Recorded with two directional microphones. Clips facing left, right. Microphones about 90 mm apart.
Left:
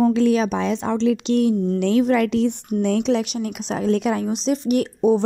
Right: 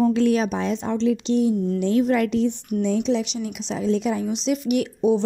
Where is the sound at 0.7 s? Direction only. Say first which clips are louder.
Left 2 dB; 90° left; by 1.5 s 70° left (ahead or behind).